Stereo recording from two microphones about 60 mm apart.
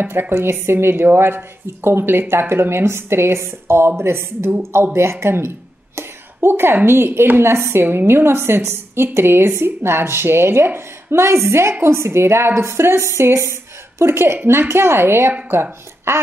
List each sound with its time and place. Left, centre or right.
0.0 s a woman's voice: right